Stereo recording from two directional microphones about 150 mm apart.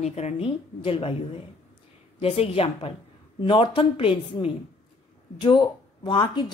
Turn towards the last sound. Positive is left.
turn(degrees=30)  # may be behind; listen again after turning